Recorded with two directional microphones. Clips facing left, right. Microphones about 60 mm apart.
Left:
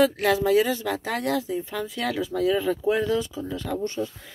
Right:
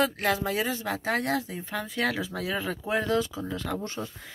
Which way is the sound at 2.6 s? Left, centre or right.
Right.